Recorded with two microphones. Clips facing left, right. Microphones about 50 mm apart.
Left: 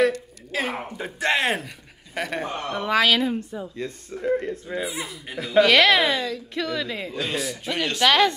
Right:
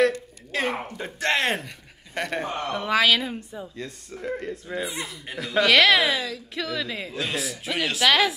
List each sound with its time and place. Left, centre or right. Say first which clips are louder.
0.0 s speech: even; centre
4.1 s speech: left 6 dB; centre